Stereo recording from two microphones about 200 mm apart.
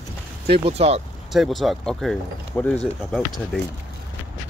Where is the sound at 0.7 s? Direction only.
30° right (ahead or behind).